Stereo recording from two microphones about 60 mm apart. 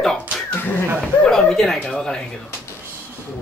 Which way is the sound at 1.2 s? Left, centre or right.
Centre.